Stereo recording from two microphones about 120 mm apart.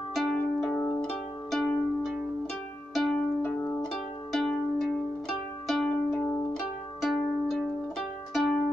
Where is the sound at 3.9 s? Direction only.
5° left (ahead or behind).